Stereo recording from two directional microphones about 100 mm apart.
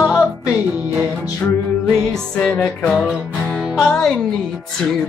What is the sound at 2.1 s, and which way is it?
Music, 5° left (ahead or behind).